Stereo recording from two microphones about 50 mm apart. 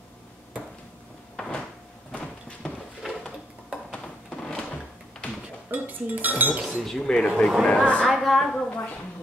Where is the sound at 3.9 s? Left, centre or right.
Centre.